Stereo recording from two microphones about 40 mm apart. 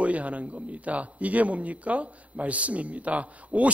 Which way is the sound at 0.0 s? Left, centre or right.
Right.